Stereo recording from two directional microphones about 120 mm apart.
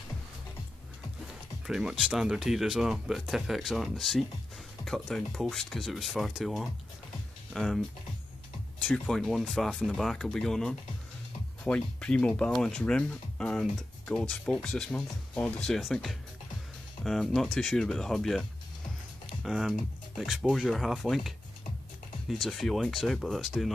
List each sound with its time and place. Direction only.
1.7 s speech: 5° right (ahead or behind)
8.9 s speech: 5° left (ahead or behind)
19.4 s speech: centre (ahead or behind)
22.3 s speech: centre (ahead or behind)